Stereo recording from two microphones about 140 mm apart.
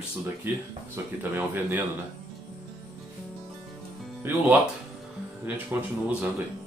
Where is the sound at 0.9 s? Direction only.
15° right (ahead or behind).